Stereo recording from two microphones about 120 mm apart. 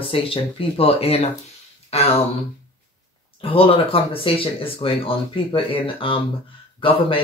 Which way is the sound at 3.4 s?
50° left (ahead or behind).